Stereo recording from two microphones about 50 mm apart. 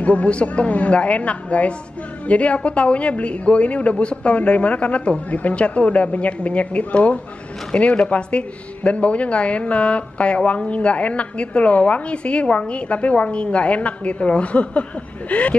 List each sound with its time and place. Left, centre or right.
0.0 s speech: left